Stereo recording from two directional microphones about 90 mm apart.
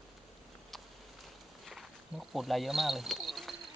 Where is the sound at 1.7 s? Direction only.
Centre (ahead or behind).